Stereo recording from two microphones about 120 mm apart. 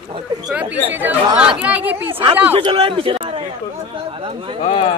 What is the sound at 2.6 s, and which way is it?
Speech, 45° right (ahead or behind).